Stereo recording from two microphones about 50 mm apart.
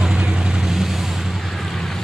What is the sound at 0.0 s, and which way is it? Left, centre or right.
Vehicle, centre.